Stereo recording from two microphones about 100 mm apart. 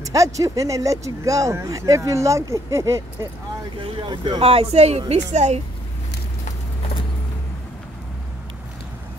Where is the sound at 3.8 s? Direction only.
50° right (ahead or behind).